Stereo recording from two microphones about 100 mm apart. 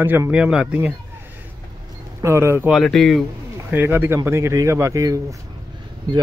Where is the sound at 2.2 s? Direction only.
25° right (ahead or behind).